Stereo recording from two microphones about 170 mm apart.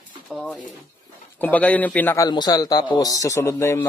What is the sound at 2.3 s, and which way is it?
A man's voice, 25° left (ahead or behind).